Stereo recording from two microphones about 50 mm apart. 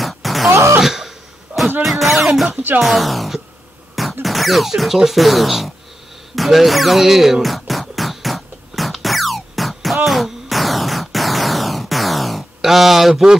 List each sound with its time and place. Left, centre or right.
0.0 s music: centre
0.5 s throat clearing: right
0.7 s throat clearing: centre
1.8 s music: centre
2.8 s speech: centre
7.9 s music: centre